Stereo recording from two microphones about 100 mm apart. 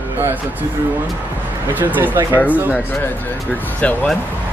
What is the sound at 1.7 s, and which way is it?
Speech, 15° right (ahead or behind).